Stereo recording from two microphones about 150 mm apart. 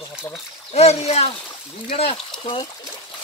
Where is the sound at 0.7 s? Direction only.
45° left (ahead or behind).